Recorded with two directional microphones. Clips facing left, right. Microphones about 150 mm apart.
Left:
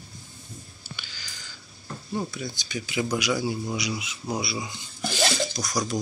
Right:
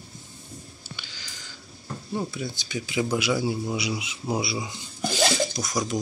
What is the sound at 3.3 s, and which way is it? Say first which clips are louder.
A man's voice: right 1 dB; 5° right (ahead or behind).